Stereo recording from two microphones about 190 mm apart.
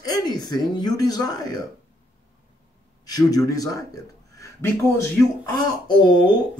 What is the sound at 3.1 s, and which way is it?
Speech, 20° left (ahead or behind).